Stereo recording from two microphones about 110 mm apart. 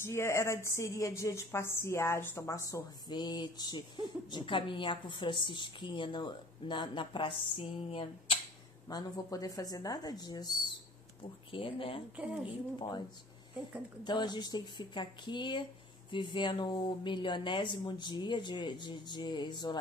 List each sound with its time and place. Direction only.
0.0 s a woman's voice: 25° left (ahead or behind)
3.1 s a woman's voice: 40° left (ahead or behind)
8.8 s speech: 35° left (ahead or behind)
11.5 s speech: 55° left (ahead or behind)
14.0 s a woman's voice: 40° left (ahead or behind)